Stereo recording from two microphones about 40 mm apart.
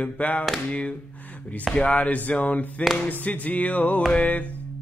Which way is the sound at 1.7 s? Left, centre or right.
Left.